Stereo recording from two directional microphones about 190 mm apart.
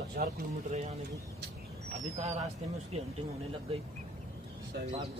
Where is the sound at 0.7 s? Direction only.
35° right (ahead or behind).